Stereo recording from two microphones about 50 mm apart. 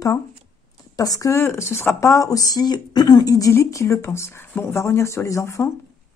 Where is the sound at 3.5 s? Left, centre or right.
Left.